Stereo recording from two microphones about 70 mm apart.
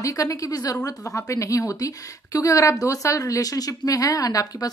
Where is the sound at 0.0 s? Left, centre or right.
Left.